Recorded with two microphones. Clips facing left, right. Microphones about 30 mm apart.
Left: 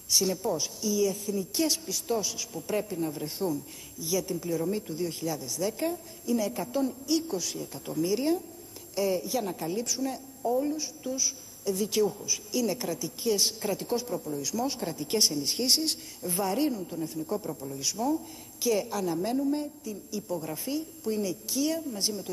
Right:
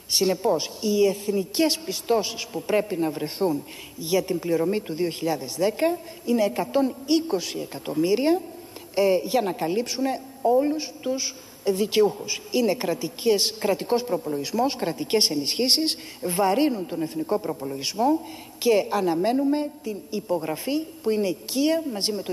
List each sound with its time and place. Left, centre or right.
0.1 s a woman's voice: right